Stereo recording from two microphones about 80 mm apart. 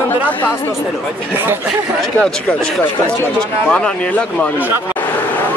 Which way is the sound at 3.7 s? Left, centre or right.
Centre.